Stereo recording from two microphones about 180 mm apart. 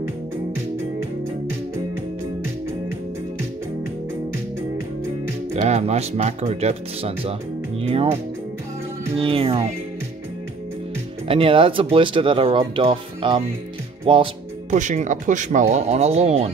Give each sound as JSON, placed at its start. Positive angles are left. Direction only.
{"t": 5.6, "sound": "speech", "side_deg": -35}
{"t": 11.2, "sound": "speech", "side_deg": -30}
{"t": 14.0, "sound": "music", "side_deg": -30}
{"t": 14.8, "sound": "speech", "side_deg": -45}